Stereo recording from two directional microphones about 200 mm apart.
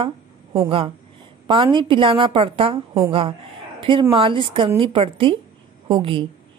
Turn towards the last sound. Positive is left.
turn(degrees=-25)  # may be behind; listen again after turning